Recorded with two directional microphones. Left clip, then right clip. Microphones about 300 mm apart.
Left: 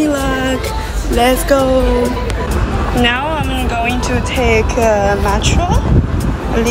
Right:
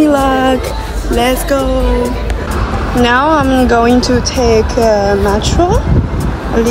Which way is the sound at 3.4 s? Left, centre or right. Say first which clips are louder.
Right 8 dB; right.